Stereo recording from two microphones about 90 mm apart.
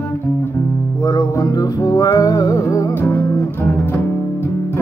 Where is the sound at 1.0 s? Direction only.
40° left (ahead or behind).